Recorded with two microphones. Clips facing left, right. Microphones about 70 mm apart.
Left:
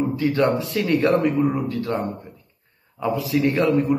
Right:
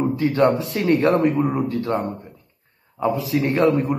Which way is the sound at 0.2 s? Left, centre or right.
Right.